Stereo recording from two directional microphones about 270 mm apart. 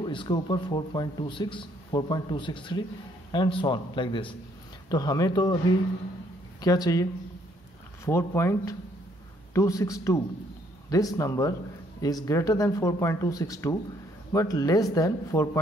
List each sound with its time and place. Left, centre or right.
0.0 s speech: centre
6.6 s speech: centre